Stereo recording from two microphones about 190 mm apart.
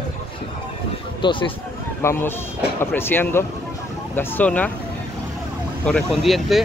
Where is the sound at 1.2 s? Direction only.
25° left (ahead or behind).